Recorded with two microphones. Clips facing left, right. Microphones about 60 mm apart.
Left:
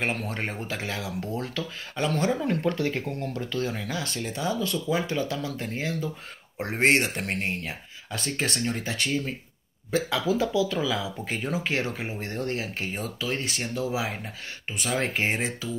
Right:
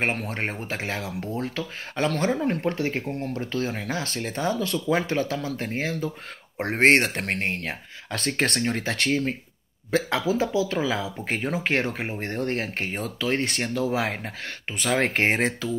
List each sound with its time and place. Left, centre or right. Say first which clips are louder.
0.0 s speech: right 2 dB; right
2.3 s speech: right 1 dB; right
10.3 s speech: even; right